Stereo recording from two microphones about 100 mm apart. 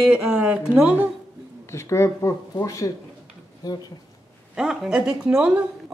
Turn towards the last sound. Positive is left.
turn(degrees=-10)  # may be behind; listen again after turning